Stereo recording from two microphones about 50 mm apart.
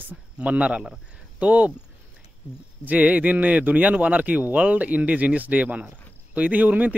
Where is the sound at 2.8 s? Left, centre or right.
Right.